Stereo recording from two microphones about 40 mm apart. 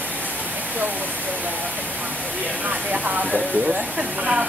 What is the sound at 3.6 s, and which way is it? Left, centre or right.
Speech, right.